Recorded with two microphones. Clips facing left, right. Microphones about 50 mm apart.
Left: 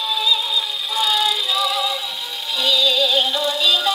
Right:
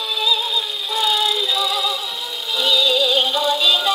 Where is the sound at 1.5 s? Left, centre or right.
Centre.